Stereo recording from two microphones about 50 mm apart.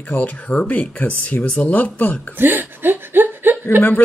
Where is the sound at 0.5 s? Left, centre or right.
Left.